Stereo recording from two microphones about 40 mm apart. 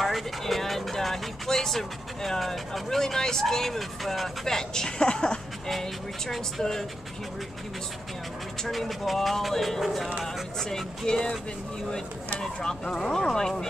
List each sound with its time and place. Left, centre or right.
0.0 s speech: centre
4.5 s a woman's voice: centre
5.7 s speech: centre
8.6 s speech: centre
12.4 s speech: centre